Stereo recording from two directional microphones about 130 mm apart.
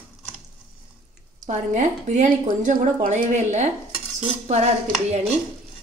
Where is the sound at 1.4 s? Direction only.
65° right (ahead or behind).